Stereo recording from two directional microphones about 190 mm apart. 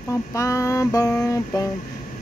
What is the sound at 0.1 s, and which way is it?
Speech, 15° left (ahead or behind).